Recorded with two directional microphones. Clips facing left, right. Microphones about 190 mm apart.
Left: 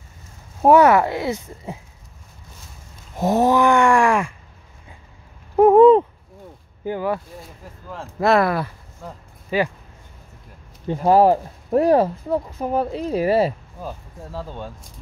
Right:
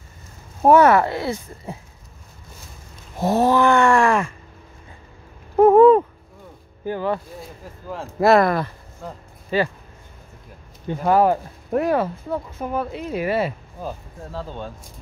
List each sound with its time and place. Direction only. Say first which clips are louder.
0.6 s speech: even; 15° left (ahead or behind)
3.2 s speech: left 1 dB; 15° left (ahead or behind)
5.6 s owl: left 1 dB; 15° left (ahead or behind)
6.8 s speech: even; 15° left (ahead or behind)
7.9 s speech: right 2 dB; 5° right (ahead or behind)
10.9 s speech: left 3 dB; 30° left (ahead or behind)
14.3 s speech: even; 10° left (ahead or behind)